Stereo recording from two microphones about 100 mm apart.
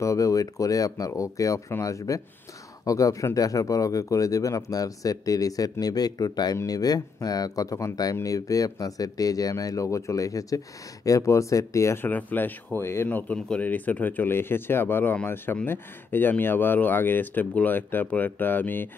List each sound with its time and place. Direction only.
0.0 s speech: 35° left (ahead or behind)
12.1 s speech: 15° left (ahead or behind)
13.3 s speech: 15° left (ahead or behind)